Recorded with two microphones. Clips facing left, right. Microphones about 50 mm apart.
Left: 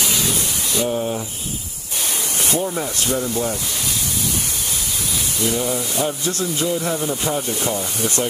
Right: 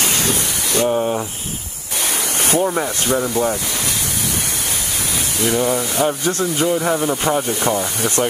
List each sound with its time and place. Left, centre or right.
0.0 s spray: right
0.8 s speech: right
2.4 s speech: right
5.5 s speech: right